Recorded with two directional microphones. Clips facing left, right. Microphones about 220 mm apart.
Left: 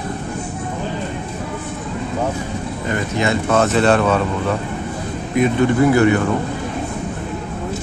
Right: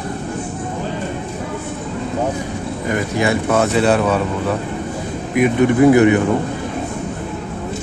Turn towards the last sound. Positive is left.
turn(degrees=-20)  # may be behind; listen again after turning